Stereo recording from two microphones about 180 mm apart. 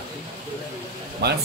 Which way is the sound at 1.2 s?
65° right (ahead or behind).